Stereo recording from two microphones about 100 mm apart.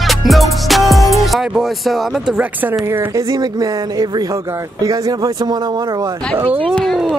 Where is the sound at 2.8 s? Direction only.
25° right (ahead or behind).